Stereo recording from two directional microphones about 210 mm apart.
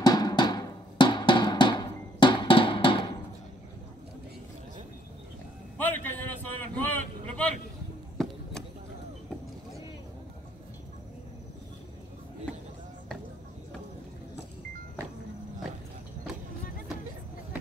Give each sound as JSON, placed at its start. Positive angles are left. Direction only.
{"t": 0.0, "sound": "music", "side_deg": 20}
{"t": 5.8, "sound": "a sound", "side_deg": 10}
{"t": 6.9, "sound": "vehicle", "side_deg": 5}